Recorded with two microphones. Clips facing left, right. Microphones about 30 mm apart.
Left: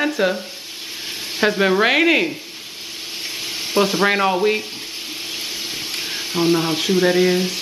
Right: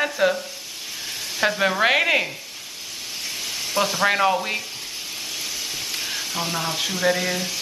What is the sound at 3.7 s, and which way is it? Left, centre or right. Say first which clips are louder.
Speech: left 4 dB; centre.